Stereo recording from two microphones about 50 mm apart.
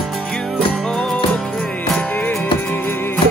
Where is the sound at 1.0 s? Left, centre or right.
Centre.